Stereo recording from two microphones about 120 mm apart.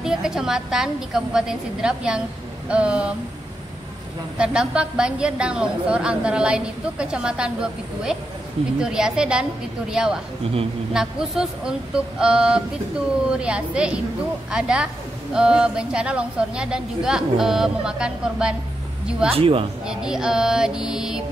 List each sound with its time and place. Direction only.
0.0 s a woman's voice: 5° right (ahead or behind)
4.4 s a woman's voice: 5° right (ahead or behind)
19.3 s speech: 50° right (ahead or behind)
19.9 s a woman's voice: 5° right (ahead or behind)